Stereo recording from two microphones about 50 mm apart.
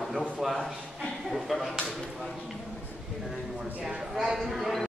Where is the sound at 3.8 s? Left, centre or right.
Centre.